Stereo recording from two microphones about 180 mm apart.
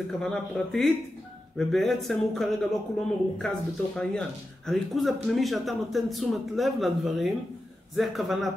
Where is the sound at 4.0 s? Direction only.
5° left (ahead or behind).